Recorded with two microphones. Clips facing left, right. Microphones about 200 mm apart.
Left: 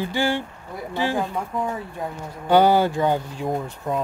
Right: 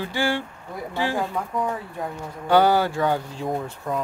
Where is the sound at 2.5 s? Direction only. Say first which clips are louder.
Left 2 dB; 15° left (ahead or behind).